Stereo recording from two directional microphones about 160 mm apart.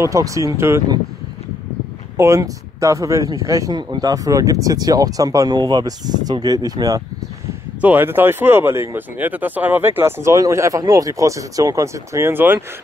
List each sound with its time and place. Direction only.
0.0 s speech: 20° right (ahead or behind)
2.1 s speech: 20° right (ahead or behind)
7.8 s speech: 10° right (ahead or behind)